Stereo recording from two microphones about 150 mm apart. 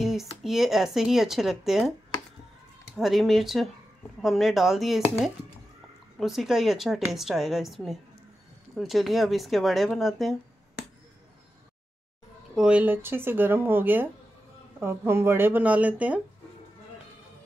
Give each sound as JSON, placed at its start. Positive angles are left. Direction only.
{"t": 0.0, "sound": "speech", "side_deg": 0}
{"t": 3.0, "sound": "speech", "side_deg": 0}
{"t": 6.1, "sound": "speech", "side_deg": 0}
{"t": 12.5, "sound": "speech", "side_deg": -5}